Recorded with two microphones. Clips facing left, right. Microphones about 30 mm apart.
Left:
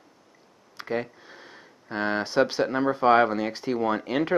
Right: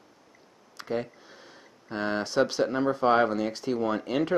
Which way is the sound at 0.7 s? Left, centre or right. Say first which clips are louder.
Left 2 dB; centre.